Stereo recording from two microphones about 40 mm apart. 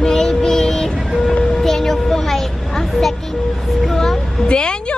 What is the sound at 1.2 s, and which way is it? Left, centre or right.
Speech, left.